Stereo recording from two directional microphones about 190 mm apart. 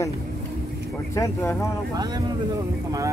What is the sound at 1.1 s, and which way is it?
Speech, 15° left (ahead or behind).